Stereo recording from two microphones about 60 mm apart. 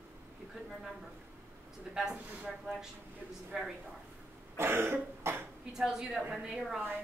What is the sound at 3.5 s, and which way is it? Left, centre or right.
Speech, centre.